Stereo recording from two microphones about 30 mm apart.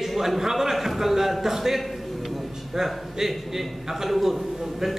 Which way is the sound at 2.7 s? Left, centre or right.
Centre.